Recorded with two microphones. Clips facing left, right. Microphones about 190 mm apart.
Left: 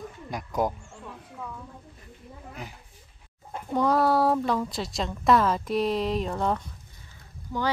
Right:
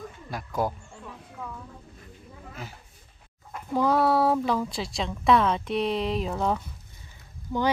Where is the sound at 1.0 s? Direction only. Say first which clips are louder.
Even; centre (ahead or behind).